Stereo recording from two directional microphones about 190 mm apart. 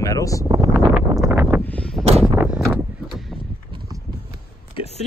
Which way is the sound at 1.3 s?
10° right (ahead or behind).